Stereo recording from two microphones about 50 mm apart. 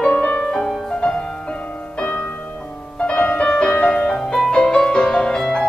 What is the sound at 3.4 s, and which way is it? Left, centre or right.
Music, centre.